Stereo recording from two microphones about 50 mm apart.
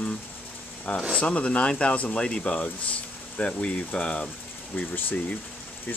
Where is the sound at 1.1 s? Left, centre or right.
Left.